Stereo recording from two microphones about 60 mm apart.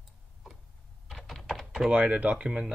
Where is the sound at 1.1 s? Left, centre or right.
Centre.